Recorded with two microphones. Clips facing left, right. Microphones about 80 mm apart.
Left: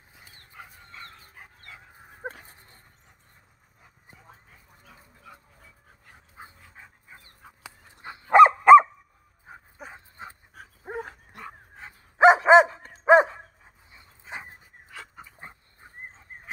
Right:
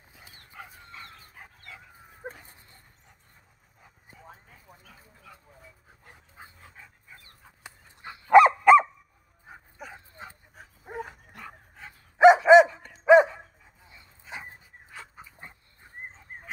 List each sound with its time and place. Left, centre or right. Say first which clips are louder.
2.2 s dog: left 3 dB; left
6.3 s dog: left 3 dB; left
8.0 s a sound: left 1 dB; left
9.8 s dog: even; left
11.3 s dog: left 3 dB; left
14.9 s dog: left 2 dB; left